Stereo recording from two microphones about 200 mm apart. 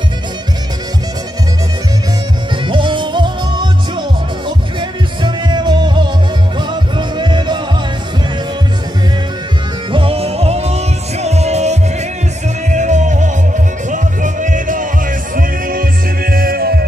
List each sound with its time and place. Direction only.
2.6 s music: 25° right (ahead or behind)
4.7 s music: 25° right (ahead or behind)
9.9 s music: 30° right (ahead or behind); by 16.8 s 50° right (ahead or behind)